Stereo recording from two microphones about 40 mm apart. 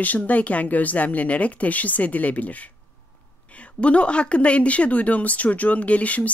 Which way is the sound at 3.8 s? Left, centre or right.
Left.